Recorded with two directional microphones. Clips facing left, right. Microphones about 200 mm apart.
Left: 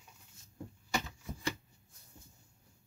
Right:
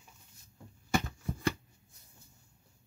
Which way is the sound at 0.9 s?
55° right (ahead or behind).